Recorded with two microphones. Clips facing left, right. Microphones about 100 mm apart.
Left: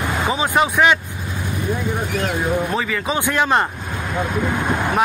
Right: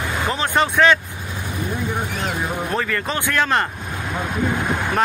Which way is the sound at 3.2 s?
15° left (ahead or behind).